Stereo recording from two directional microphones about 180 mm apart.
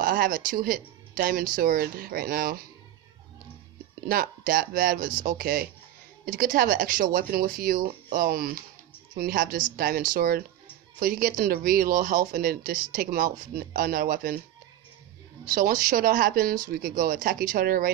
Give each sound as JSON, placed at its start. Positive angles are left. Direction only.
{"t": 0.0, "sound": "speech", "side_deg": -50}
{"t": 4.1, "sound": "speech", "side_deg": -55}
{"t": 15.5, "sound": "speech", "side_deg": -50}